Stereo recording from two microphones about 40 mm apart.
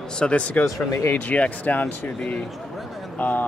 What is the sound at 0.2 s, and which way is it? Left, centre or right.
Speech, left.